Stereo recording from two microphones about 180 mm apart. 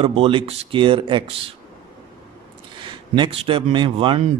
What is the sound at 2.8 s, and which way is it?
Speech, 30° right (ahead or behind).